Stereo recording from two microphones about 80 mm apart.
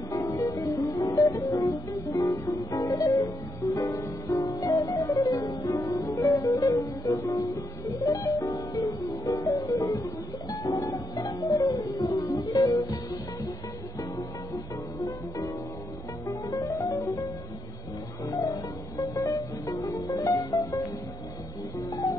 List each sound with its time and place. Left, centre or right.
0.1 s music: left